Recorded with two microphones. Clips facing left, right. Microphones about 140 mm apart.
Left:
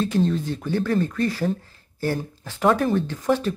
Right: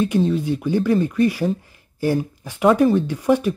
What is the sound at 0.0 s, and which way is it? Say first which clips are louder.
Speech: right 3 dB; 10° right (ahead or behind).